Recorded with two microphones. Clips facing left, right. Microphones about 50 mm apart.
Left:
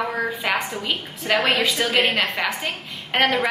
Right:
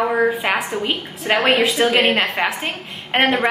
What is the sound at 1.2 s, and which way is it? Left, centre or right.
Speech, right.